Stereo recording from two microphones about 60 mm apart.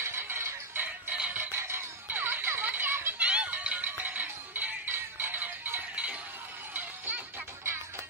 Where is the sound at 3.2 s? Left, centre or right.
Centre.